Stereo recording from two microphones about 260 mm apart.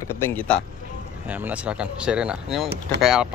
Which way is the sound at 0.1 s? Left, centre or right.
Centre.